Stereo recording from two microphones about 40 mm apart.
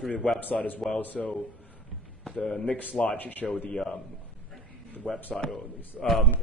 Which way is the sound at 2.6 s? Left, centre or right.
Left.